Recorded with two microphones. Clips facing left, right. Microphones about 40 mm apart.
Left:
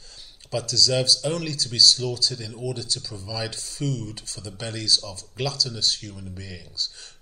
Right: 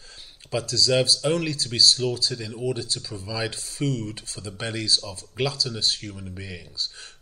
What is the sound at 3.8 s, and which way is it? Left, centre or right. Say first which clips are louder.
Speech: right 2 dB; right.